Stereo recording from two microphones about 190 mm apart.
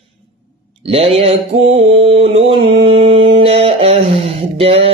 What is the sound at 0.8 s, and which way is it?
Mantra, 30° right (ahead or behind).